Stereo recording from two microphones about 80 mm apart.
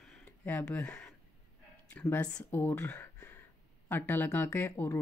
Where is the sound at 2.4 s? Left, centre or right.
Left.